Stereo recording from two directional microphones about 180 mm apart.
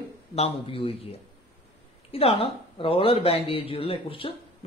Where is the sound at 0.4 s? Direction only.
30° left (ahead or behind).